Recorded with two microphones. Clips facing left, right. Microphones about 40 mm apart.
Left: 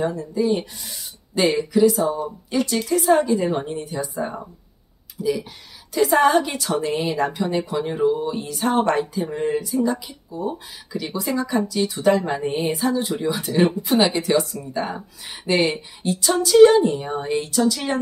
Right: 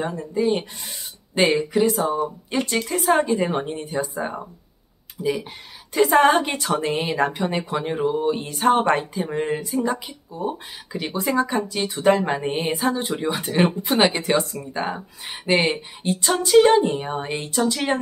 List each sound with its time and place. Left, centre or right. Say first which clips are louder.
0.0 s a woman's voice: left 1 dB; right
5.2 s a woman's voice: left 1 dB; right